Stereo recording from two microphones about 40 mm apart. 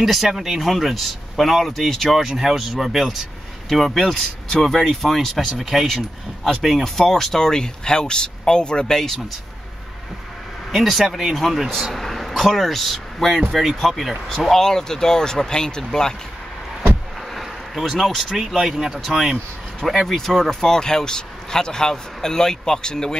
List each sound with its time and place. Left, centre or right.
0.0 s speech: centre
2.1 s speech: centre
5.9 s speech: centre
10.8 s speech: centre
11.3 s speech: centre
17.3 s a sound: centre
18.3 s speech: centre
20.1 s speech: centre